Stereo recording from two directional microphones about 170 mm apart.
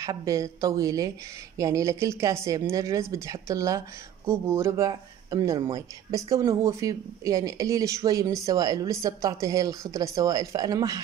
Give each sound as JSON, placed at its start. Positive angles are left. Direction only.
{"t": 0.0, "sound": "speech", "side_deg": -20}